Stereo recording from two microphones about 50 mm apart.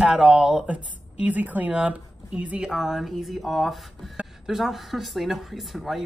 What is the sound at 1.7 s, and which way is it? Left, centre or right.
Speech, right.